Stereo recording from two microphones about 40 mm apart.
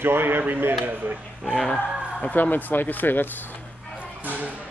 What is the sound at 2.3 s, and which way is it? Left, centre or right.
Speech, left.